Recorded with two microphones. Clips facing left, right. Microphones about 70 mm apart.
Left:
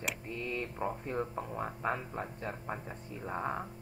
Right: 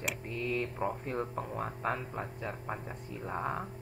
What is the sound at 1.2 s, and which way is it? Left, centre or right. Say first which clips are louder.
Speech: right 1 dB; centre.